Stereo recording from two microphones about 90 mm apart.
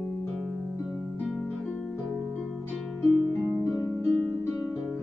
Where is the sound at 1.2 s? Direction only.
10° left (ahead or behind).